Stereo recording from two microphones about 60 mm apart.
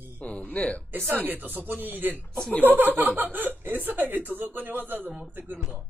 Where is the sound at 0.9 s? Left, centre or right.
Right.